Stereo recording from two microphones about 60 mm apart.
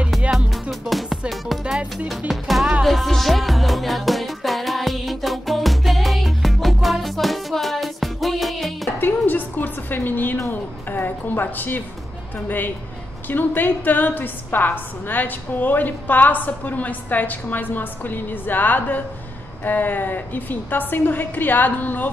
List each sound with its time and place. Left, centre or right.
0.3 s music: centre
1.6 s music: centre
2.0 s music: centre
9.0 s a sound: left
12.4 s a woman's voice: left